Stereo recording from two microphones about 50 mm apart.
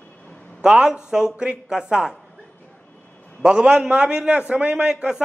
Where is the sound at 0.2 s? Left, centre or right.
Left.